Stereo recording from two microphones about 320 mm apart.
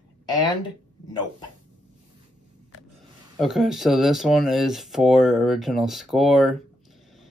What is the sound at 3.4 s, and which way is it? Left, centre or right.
Speech, centre.